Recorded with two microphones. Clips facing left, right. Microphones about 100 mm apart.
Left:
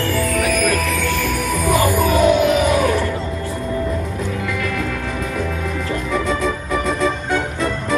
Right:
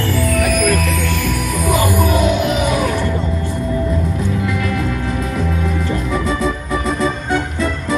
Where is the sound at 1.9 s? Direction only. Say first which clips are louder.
Left 1 dB; 15° right (ahead or behind).